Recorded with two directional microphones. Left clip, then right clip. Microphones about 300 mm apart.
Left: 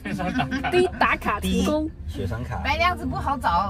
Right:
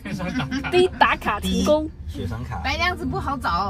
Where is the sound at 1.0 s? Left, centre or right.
Centre.